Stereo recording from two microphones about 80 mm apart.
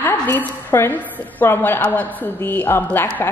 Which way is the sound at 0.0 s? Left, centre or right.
Left.